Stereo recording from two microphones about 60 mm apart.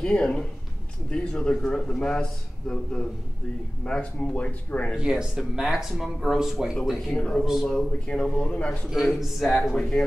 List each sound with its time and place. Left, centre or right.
0.0 s speech: centre
1.5 s speech: centre; by 4.9 s left
4.9 s speech: centre
7.1 s speech: centre
8.9 s speech: centre
9.8 s speech: centre